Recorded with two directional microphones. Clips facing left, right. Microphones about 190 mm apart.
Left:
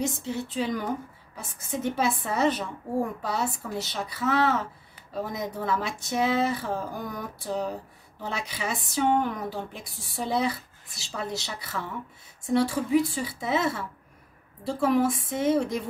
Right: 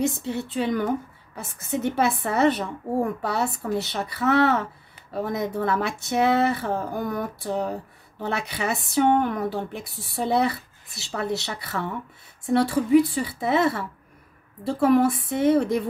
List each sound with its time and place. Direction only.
0.0 s speech: 60° right (ahead or behind)